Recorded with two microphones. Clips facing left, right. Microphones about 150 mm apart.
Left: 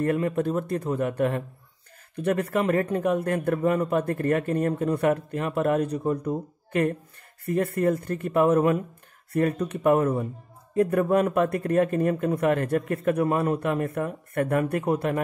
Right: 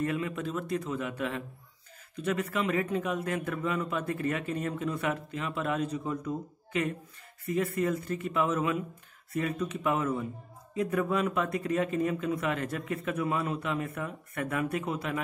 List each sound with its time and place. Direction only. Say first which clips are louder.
0.0 s a man's voice: left 7 dB; 50° left (ahead or behind)